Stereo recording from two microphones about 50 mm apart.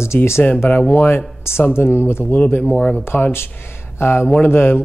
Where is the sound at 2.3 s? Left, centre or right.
Left.